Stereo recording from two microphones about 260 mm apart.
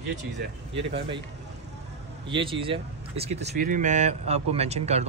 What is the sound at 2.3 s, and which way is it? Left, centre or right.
Speech, centre.